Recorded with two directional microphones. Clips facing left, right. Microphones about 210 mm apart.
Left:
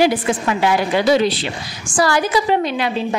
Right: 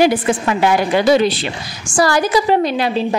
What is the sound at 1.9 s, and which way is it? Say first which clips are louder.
A woman's voice: right 2 dB; 40° right (ahead or behind).